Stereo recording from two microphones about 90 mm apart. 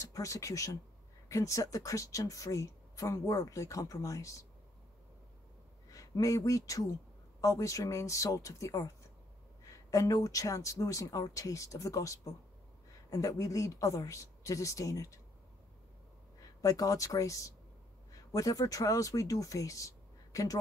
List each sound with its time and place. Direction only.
0.0 s speech: 35° left (ahead or behind)
5.9 s speech: 40° left (ahead or behind)
16.3 s speech: 40° left (ahead or behind)